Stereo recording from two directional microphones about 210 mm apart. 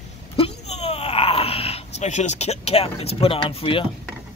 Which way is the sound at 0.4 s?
30° left (ahead or behind).